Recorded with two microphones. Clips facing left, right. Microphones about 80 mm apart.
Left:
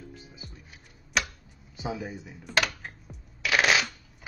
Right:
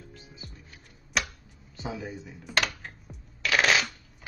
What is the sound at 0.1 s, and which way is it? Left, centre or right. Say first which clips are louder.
Music: left 1 dB; centre.